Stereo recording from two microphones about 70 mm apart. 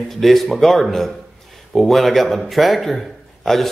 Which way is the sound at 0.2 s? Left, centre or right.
Centre.